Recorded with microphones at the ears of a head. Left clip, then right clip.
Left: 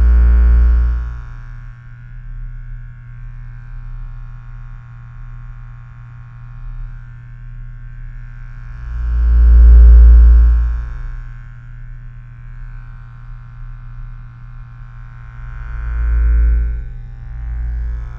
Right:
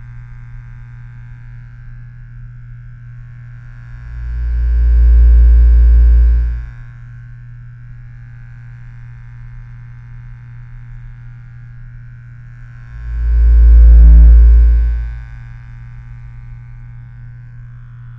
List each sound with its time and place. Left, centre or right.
0.0 s music: left
4.8 s synthesizer: right
9.3 s music: left
13.4 s music: right
16.1 s music: left